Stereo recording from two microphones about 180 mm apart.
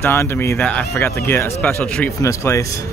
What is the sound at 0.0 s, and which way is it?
Speech, 15° left (ahead or behind).